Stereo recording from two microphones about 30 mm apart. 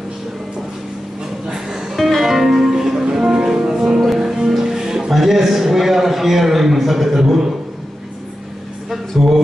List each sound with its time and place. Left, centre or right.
1.5 s music: centre
2.0 s music: centre
8.9 s a sound: centre